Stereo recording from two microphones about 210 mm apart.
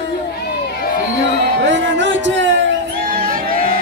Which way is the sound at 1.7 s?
60° right (ahead or behind).